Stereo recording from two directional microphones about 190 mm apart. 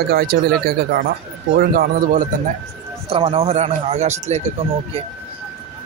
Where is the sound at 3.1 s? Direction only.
30° right (ahead or behind).